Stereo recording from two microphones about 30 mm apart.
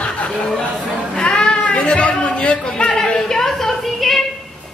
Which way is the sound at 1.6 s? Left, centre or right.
Left.